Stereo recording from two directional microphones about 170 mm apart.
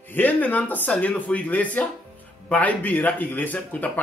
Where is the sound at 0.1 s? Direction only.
10° left (ahead or behind).